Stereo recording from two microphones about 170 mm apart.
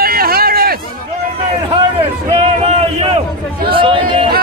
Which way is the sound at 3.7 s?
30° right (ahead or behind).